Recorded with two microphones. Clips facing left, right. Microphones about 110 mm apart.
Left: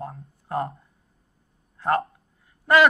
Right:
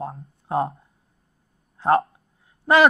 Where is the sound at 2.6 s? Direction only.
25° right (ahead or behind).